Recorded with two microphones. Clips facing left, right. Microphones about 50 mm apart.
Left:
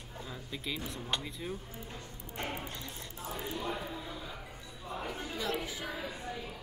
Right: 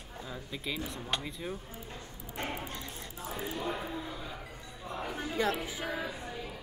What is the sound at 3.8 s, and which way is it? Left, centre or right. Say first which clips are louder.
Music: right 2 dB; centre.